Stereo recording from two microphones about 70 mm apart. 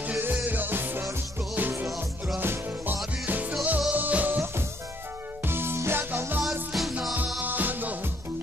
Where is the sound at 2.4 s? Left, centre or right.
Right.